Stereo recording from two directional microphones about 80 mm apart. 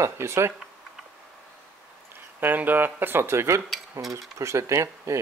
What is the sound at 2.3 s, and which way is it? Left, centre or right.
Speech, right.